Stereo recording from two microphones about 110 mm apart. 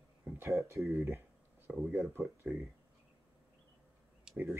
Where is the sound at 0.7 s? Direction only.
25° right (ahead or behind).